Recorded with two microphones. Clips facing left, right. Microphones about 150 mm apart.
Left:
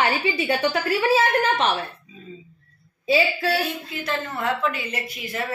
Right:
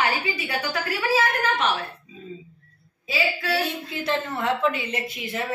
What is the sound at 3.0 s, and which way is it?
Speech, 30° left (ahead or behind).